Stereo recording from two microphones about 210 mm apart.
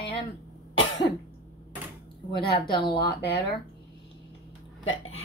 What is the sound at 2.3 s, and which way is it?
Speech, 50° left (ahead or behind).